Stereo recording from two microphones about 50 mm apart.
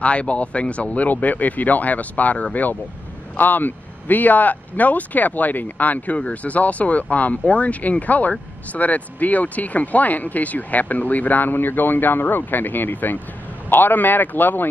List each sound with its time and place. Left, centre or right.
0.0 s speech: left